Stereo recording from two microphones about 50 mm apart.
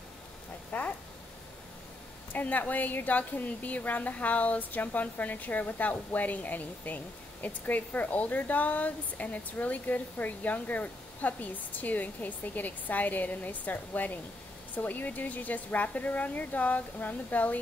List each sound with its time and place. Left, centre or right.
0.7 s speech: left
2.3 s a woman's voice: left